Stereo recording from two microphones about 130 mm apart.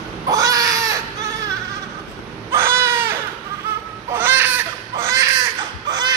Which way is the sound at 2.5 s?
20° right (ahead or behind).